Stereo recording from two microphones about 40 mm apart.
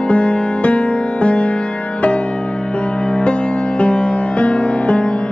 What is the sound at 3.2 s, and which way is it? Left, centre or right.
Music, left.